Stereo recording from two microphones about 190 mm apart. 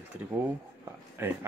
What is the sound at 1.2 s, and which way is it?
Speech, 10° right (ahead or behind).